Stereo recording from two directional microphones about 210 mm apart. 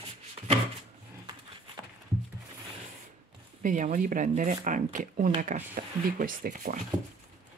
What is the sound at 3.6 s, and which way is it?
A woman's voice, 40° right (ahead or behind).